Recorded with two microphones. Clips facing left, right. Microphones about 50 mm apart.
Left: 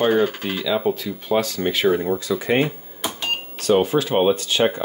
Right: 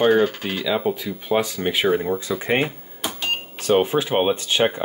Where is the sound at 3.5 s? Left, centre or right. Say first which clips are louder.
Left 1 dB; centre.